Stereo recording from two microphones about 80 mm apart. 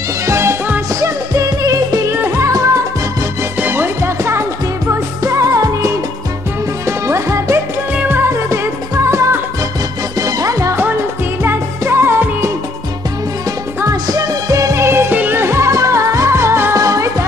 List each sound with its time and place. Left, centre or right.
0.3 s music: right
2.0 s music: right
3.6 s music: right
7.9 s music: centre
8.2 s music: right
11.4 s music: right
13.8 s music: right
16.7 s music: right